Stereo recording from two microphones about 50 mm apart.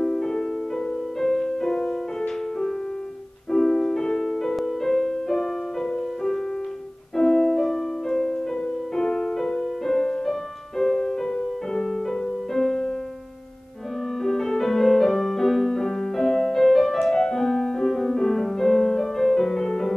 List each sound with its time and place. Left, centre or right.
0.0 s music: centre
3.5 s music: centre
14.2 s music: centre